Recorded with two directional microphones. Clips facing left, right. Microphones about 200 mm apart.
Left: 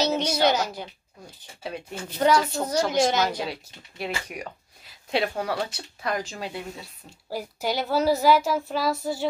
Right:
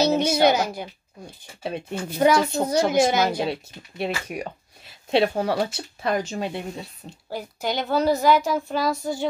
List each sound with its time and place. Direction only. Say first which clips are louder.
0.2 s a woman's voice: right 4 dB; 10° right (ahead or behind)
1.2 s speech: right 4 dB; 25° right (ahead or behind)
2.0 s a woman's voice: right 3 dB; 10° right (ahead or behind)
2.3 s speech: right 2 dB; 25° right (ahead or behind)
2.7 s a woman's voice: right 2 dB; 10° right (ahead or behind)
3.3 s speech: right 5 dB; 25° right (ahead or behind)
7.2 s a woman's voice: even; 5° left (ahead or behind)